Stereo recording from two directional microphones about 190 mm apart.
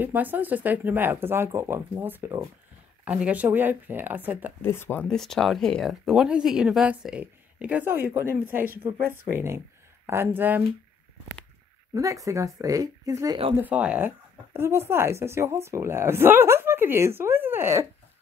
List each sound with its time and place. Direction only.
0.0 s speech: 10° right (ahead or behind)
4.6 s speech: 10° left (ahead or behind); by 10.6 s 10° right (ahead or behind)
11.9 s speech: 15° right (ahead or behind)
13.6 s speech: 5° right (ahead or behind)